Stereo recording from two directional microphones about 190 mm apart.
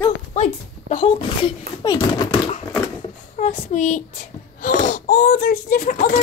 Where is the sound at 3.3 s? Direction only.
40° left (ahead or behind).